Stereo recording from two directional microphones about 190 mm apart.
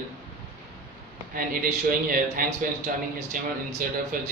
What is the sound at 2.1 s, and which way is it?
Speech, 50° right (ahead or behind).